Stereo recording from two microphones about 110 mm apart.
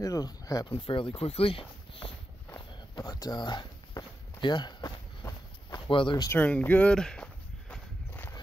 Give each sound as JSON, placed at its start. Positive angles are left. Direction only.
{"t": 0.0, "sound": "speech", "side_deg": 30}
{"t": 0.7, "sound": "speech", "side_deg": 50}
{"t": 3.0, "sound": "a sound", "side_deg": 35}
{"t": 6.3, "sound": "speech", "side_deg": 15}